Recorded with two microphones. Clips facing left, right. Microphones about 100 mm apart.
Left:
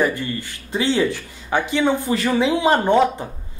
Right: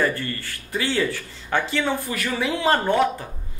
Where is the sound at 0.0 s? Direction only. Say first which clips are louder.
Left 3 dB; 15° left (ahead or behind).